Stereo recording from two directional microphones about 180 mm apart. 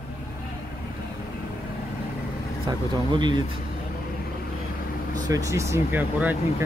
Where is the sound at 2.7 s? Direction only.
25° right (ahead or behind).